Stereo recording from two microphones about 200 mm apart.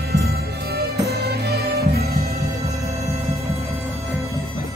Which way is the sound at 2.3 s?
15° right (ahead or behind).